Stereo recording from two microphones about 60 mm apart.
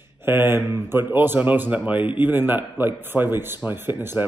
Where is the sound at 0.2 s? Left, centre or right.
Right.